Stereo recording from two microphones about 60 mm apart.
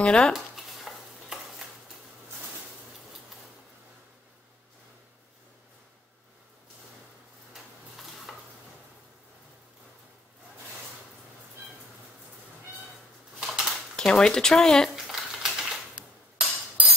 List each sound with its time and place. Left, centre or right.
0.0 s speech: centre
0.3 s stir: centre
8.3 s stir: centre
13.4 s typewriter: centre
13.9 s speech: centre
15.0 s typewriter: centre
16.3 s cutlery: right